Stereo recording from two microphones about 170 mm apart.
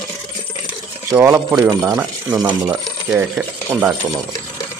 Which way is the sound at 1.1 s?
15° right (ahead or behind).